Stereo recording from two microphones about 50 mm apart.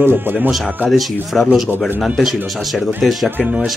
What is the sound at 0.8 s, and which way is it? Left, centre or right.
Speech, centre.